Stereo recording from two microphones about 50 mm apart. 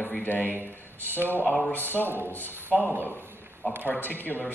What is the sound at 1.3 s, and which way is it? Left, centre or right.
Speech, left.